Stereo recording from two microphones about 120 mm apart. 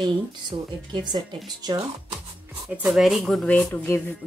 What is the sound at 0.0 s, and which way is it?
A woman's voice, 40° right (ahead or behind).